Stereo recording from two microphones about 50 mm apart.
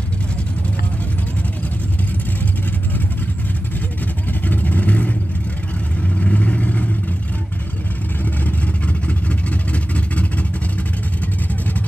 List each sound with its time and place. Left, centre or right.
4.3 s vehicle: left
8.5 s vehicle: left